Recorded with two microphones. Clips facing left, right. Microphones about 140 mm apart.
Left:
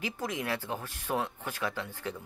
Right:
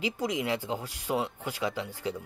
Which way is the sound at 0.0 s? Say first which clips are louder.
Right 4 dB; 15° right (ahead or behind).